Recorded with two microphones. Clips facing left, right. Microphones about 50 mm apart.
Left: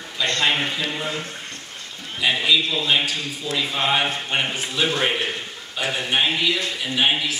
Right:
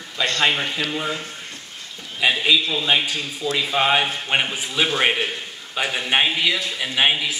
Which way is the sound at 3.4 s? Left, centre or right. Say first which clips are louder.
Right 4 dB; right.